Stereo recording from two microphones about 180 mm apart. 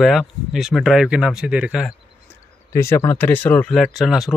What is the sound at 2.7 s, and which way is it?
Speech, 15° left (ahead or behind).